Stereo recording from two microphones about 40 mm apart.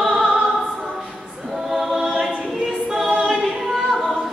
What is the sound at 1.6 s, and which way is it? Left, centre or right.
Choir, centre.